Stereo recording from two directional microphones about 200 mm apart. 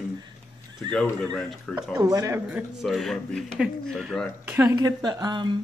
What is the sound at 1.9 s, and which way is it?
Speech, 20° right (ahead or behind).